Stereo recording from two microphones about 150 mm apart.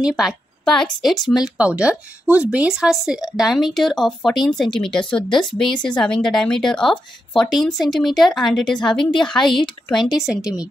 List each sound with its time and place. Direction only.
0.0 s a woman's voice: centre (ahead or behind)